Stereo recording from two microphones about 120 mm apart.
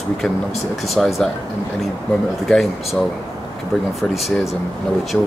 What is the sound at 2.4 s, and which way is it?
Speech, centre (ahead or behind).